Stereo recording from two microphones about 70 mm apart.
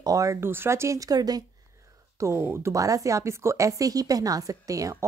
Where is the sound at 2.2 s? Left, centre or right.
Right.